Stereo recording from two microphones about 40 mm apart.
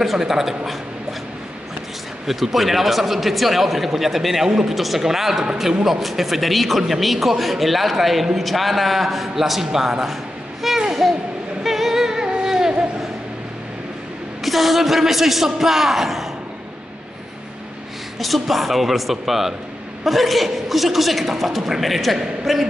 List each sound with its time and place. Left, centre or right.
0.2 s a man's voice: centre
2.2 s a man's voice: centre
10.6 s a sound: centre
11.6 s singing: centre
14.4 s a man's voice: centre
18.2 s speech: centre